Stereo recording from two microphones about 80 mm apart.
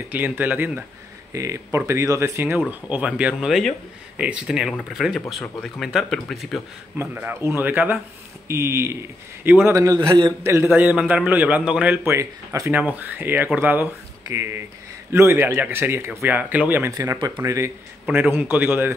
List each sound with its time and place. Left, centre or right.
0.1 s speech: right
1.3 s speech: right; by 3.3 s centre
3.3 s speech: centre
7.0 s speech: right
7.3 s speech: right
7.6 s speech: right
8.5 s a man's voice: right
9.9 s a man's voice: right
10.4 s speech: right; by 12.0 s centre
12.0 s speech: right
12.7 s speech: right
14.2 s speech: right
17.4 s speech: right
18.1 s speech: right